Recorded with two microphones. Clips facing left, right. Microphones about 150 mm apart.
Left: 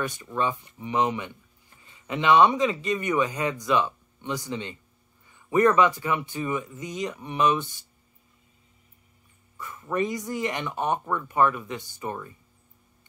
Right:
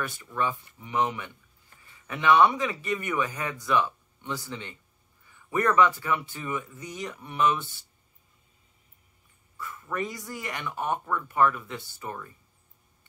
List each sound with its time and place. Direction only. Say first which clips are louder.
0.0 s speech: left 3 dB; 20° left (ahead or behind)
9.6 s speech: left 5 dB; 20° left (ahead or behind)